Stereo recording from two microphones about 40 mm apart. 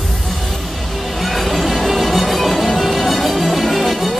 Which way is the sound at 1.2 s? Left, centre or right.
Centre.